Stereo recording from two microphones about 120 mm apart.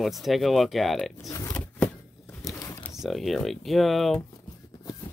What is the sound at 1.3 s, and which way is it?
Pig, 25° left (ahead or behind).